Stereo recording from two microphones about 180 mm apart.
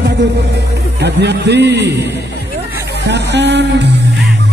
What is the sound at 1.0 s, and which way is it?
Speech, 70° right (ahead or behind).